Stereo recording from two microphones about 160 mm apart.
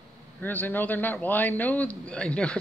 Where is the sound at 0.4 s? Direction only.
10° left (ahead or behind).